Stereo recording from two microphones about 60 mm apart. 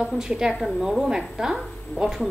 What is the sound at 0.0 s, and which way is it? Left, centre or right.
A woman's voice, centre.